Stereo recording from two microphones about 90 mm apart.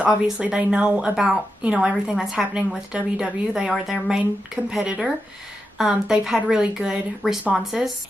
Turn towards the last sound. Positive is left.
turn(degrees=-5)  # may be behind; listen again after turning